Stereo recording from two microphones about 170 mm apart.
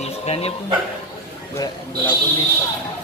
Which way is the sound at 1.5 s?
25° left (ahead or behind).